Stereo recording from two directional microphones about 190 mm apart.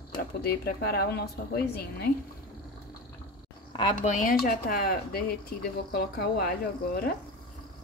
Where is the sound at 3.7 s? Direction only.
25° left (ahead or behind).